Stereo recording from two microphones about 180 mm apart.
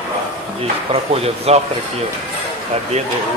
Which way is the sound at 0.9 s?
35° right (ahead or behind).